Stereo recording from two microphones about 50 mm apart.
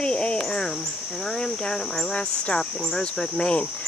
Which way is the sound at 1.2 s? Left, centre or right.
Centre.